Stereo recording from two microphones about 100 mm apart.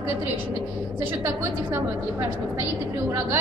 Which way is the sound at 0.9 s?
25° right (ahead or behind).